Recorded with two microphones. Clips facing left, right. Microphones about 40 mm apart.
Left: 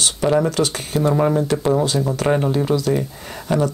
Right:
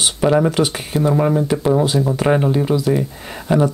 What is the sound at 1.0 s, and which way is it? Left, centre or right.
Speech, centre.